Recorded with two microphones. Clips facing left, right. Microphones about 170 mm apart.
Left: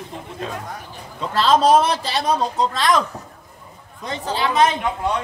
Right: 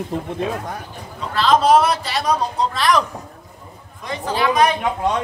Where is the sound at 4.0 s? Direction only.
25° left (ahead or behind).